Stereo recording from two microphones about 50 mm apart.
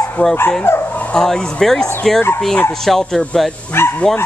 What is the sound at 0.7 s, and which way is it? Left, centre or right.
Speech, left.